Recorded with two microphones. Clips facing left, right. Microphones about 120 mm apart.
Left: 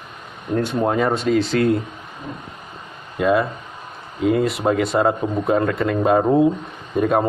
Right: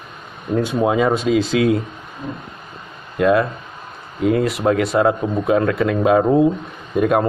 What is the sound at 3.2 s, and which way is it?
Speech, centre (ahead or behind).